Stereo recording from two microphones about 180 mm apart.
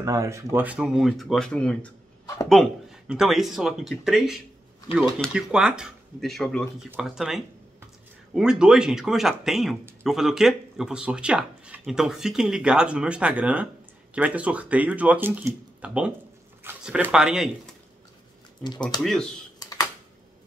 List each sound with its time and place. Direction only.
0.0 s speech: 15° right (ahead or behind)
19.6 s computer keyboard: 20° left (ahead or behind)